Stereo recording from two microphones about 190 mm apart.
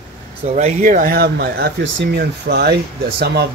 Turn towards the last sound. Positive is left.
turn(degrees=-60)  # may be behind; listen again after turning